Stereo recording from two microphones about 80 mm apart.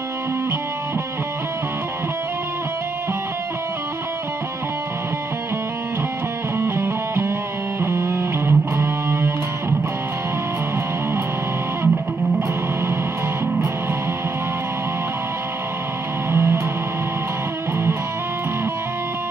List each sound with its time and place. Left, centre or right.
6.6 s music: right
16.3 s music: right